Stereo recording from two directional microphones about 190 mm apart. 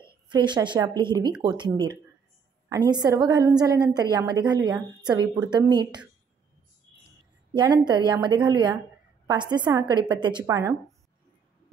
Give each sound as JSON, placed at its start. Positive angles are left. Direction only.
{"t": 0.3, "sound": "a woman's voice", "side_deg": -25}
{"t": 7.5, "sound": "a woman's voice", "side_deg": -25}